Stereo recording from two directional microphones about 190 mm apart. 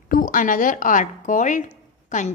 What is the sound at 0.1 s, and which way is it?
A woman's voice, 45° left (ahead or behind).